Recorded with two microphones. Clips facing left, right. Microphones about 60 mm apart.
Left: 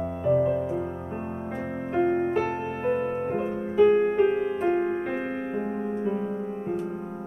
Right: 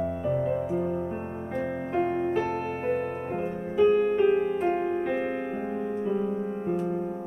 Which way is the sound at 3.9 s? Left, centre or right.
Left.